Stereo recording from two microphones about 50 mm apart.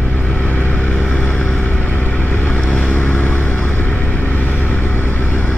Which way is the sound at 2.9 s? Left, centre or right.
Left.